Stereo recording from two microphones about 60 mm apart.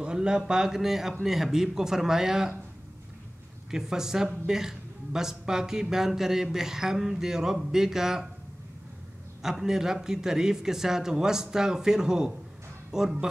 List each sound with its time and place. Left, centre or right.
0.0 s speech: centre
3.7 s speech: centre
9.4 s speech: centre